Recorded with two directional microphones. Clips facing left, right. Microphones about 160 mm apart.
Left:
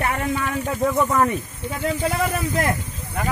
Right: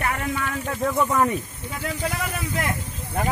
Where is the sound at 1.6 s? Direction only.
35° left (ahead or behind).